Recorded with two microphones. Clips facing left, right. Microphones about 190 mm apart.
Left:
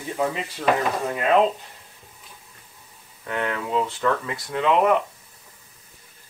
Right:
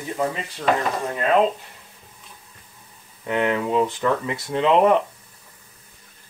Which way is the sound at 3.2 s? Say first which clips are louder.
Right 5 dB; 20° right (ahead or behind).